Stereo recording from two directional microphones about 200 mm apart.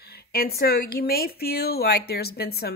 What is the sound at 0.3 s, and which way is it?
Speech, 50° left (ahead or behind).